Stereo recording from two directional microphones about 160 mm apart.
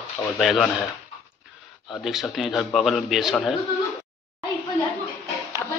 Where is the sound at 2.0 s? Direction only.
Centre (ahead or behind).